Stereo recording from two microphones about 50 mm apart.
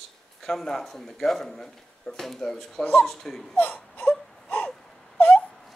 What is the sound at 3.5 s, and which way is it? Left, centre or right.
Wail, left.